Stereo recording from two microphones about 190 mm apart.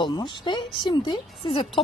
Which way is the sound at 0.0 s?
25° left (ahead or behind).